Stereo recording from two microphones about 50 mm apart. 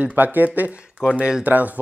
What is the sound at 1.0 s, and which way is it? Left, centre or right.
Speech, centre.